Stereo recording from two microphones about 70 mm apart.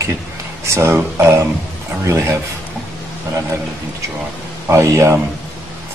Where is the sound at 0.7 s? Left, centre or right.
Right.